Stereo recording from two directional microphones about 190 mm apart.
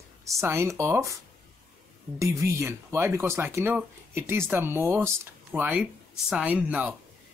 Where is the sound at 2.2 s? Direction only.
15° right (ahead or behind).